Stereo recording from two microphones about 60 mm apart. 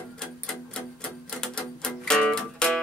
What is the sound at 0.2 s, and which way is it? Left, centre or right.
Typewriter, centre.